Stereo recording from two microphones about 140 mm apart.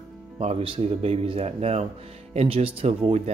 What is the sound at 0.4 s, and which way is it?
Speech, 45° right (ahead or behind).